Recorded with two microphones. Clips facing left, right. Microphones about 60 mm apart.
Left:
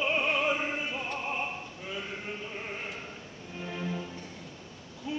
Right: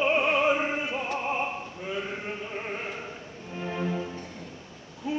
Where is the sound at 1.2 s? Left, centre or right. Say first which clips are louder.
Right 5 dB; centre.